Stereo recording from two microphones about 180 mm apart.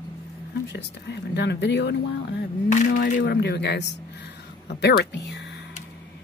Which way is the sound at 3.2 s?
65° left (ahead or behind).